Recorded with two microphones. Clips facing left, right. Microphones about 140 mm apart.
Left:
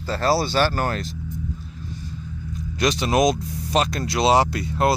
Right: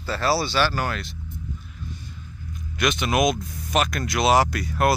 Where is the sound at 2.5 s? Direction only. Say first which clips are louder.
Left 2 dB; 35° left (ahead or behind).